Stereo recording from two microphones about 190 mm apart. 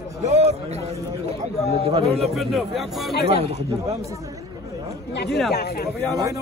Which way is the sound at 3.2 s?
35° right (ahead or behind).